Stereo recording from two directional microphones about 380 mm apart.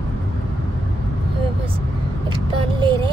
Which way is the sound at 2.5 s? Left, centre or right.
Centre.